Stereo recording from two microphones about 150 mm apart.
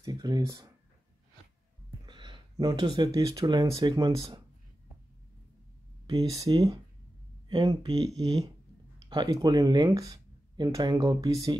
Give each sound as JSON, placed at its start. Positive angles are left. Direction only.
{"t": 0.0, "sound": "speech", "side_deg": -25}
{"t": 1.9, "sound": "a sound", "side_deg": -30}
{"t": 3.2, "sound": "speech", "side_deg": -25}
{"t": 6.0, "sound": "speech", "side_deg": -25}